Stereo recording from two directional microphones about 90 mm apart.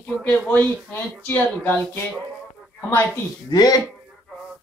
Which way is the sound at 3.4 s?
45° left (ahead or behind).